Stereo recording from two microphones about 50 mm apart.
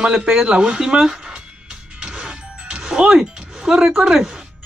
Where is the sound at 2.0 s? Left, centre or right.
Centre.